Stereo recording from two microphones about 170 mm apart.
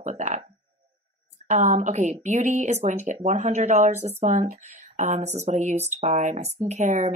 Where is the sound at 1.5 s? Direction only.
45° right (ahead or behind).